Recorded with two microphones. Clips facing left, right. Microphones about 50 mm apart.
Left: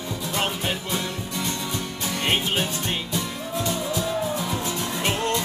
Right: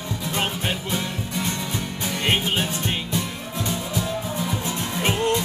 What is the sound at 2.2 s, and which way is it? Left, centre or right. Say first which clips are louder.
Music: right 1 dB; centre.